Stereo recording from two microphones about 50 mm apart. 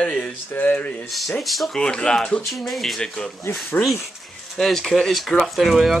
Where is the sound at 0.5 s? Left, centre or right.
Left.